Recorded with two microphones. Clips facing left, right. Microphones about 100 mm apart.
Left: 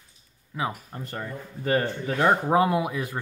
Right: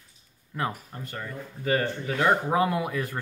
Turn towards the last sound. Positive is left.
turn(degrees=15)  # may be behind; listen again after turning